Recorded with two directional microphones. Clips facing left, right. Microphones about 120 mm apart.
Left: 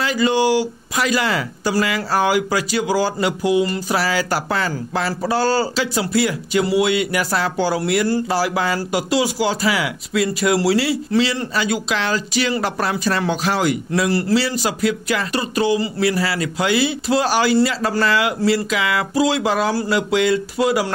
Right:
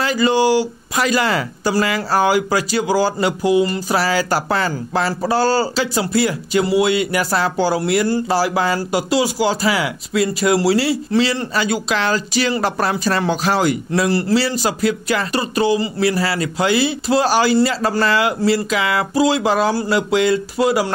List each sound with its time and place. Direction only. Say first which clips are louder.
0.0 s speech: right 2 dB; 40° right (ahead or behind)